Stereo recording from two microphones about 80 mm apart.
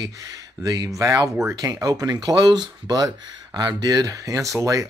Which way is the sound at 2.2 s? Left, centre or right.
Right.